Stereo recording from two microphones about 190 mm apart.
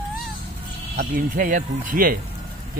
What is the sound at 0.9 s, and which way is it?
Speech, 45° right (ahead or behind).